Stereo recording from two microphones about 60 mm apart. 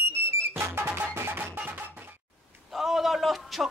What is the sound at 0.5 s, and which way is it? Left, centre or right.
Music, right.